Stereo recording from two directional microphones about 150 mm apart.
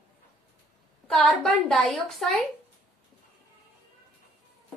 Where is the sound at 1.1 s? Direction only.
5° left (ahead or behind).